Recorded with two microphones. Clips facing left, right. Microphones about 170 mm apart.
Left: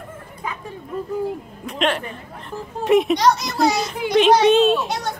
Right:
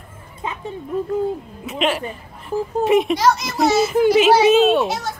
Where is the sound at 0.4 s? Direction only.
25° right (ahead or behind).